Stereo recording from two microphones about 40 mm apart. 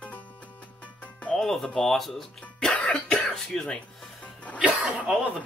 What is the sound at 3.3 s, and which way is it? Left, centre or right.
Speech, centre.